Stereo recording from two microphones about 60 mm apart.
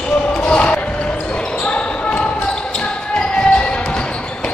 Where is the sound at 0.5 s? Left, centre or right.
Centre.